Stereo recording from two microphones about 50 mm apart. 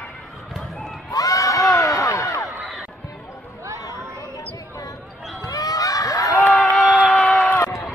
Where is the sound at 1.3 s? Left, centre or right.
Left.